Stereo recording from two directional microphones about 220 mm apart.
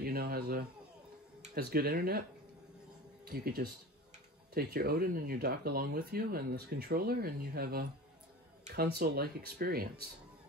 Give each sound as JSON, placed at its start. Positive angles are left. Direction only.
{"t": 0.0, "sound": "a sound", "side_deg": -45}
{"t": 1.4, "sound": "speech", "side_deg": -45}
{"t": 3.3, "sound": "speech", "side_deg": -45}